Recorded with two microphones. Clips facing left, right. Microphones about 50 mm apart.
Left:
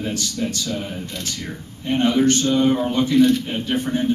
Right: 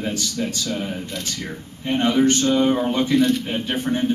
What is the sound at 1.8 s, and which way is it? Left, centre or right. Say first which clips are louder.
Speech: left 1 dB; right.